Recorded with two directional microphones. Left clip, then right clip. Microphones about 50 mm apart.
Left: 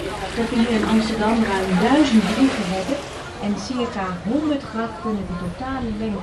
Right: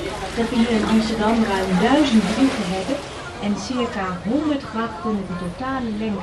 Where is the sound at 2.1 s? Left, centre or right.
Left.